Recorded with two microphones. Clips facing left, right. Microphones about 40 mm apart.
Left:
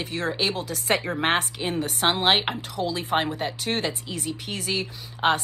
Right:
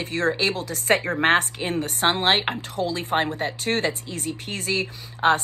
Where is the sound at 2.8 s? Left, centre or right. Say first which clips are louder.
Right 2 dB; left.